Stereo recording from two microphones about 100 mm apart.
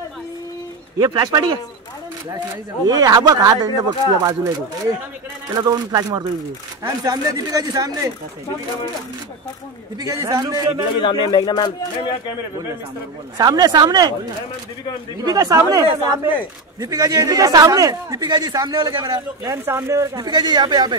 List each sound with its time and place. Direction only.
0.9 s speech: 40° right (ahead or behind)
9.9 s speech: 35° right (ahead or behind)
10.4 s speech: 45° right (ahead or behind)
11.0 s speech: 55° left (ahead or behind)
13.4 s speech: 40° right (ahead or behind)
15.2 s speech: 35° right (ahead or behind)
19.5 s speech: 25° right (ahead or behind); by 20.9 s 45° right (ahead or behind)